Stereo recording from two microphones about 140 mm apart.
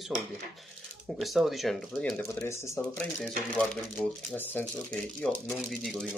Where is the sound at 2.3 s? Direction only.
20° left (ahead or behind).